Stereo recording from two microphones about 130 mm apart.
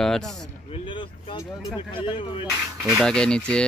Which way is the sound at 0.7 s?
40° left (ahead or behind).